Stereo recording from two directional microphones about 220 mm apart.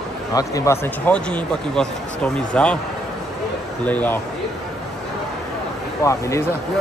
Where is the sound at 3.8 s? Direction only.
5° left (ahead or behind).